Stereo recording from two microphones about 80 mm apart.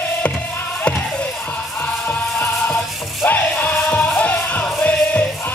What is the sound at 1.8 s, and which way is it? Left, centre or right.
Music, left.